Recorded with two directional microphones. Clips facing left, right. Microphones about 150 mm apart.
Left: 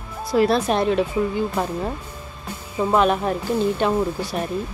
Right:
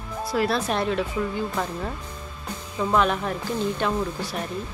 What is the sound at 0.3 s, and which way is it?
Speech, 20° left (ahead or behind).